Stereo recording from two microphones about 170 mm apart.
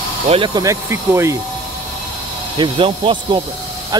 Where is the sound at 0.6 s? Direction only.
15° right (ahead or behind).